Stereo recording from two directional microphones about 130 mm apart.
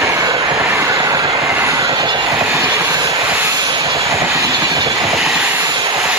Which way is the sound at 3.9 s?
25° right (ahead or behind).